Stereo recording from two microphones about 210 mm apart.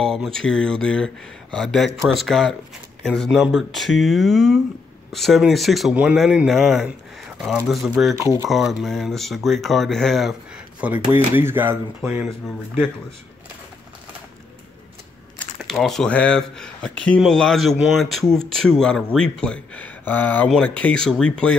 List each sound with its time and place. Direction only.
0.0 s speech: centre (ahead or behind)
15.3 s speech: centre (ahead or behind)